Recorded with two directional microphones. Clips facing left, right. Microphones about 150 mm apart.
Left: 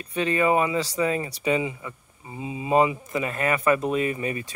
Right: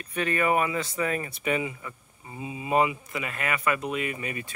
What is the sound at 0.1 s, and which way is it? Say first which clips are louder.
Speech: left 3 dB; 25° left (ahead or behind).